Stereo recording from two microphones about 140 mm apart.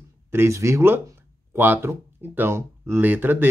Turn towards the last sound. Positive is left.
turn(degrees=-15)  # may be behind; listen again after turning